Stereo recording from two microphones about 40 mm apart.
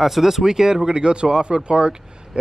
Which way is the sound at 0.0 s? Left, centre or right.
Centre.